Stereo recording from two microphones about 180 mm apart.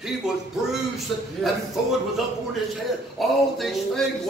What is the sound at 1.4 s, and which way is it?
A man's voice, centre (ahead or behind).